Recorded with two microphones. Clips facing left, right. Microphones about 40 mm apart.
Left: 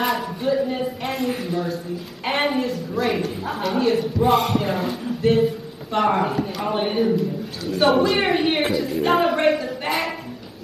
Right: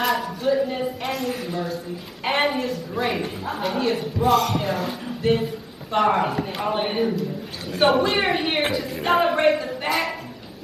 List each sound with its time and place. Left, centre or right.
0.0 s speech: centre
1.1 s a man's voice: centre
1.4 s speech: centre
4.3 s a man's voice: centre